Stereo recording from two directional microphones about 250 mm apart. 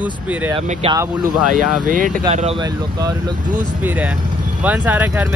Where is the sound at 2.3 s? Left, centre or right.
Right.